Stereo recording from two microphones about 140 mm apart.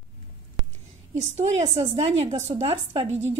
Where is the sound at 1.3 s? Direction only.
50° right (ahead or behind).